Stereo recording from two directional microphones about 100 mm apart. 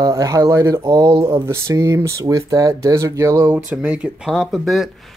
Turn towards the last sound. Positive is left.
turn(degrees=0)  # may be behind; listen again after turning